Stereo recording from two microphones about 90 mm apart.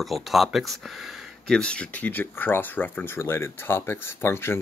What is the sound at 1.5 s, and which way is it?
Speech, 10° left (ahead or behind).